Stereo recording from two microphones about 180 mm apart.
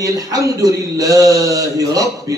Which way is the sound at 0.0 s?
20° right (ahead or behind).